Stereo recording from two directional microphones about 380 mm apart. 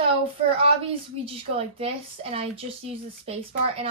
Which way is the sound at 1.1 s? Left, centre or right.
Centre.